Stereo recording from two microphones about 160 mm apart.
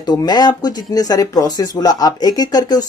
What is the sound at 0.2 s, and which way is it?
Speech, 25° left (ahead or behind).